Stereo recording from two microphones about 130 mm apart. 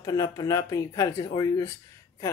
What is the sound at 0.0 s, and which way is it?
Speech, 30° left (ahead or behind).